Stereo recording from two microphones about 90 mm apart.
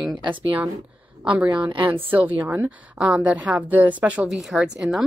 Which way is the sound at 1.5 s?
60° right (ahead or behind).